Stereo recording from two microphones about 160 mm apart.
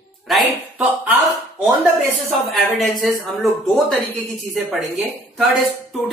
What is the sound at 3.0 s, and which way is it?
Speech, centre (ahead or behind).